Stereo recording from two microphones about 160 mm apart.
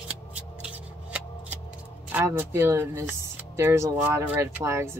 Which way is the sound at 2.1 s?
15° right (ahead or behind).